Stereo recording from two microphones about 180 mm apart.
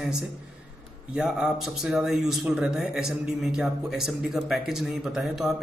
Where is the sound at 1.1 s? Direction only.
5° right (ahead or behind).